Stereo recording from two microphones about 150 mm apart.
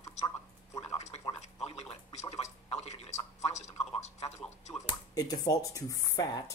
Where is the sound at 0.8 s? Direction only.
45° left (ahead or behind).